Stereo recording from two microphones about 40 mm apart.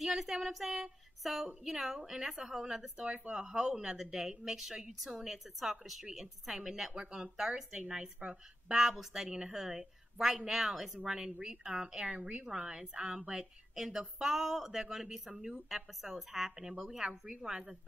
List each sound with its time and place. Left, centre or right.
0.0 s female singing: centre
1.2 s a woman's voice: centre
3.1 s a woman's voice: right
8.2 s speech: right
8.9 s a woman's voice: centre
10.4 s female singing: centre
11.1 s a woman's voice: centre